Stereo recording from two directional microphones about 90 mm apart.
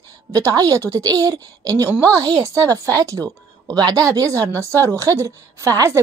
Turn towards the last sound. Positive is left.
turn(degrees=-35)  # may be behind; listen again after turning